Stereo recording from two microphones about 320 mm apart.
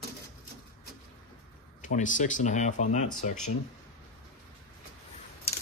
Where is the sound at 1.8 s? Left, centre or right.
Left.